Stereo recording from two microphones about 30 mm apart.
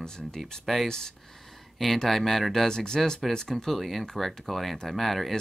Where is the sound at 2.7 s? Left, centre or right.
Left.